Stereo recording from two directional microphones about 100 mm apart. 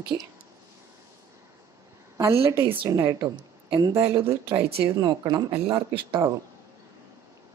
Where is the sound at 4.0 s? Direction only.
25° right (ahead or behind).